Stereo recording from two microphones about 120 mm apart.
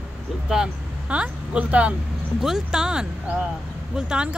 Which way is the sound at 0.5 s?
10° right (ahead or behind).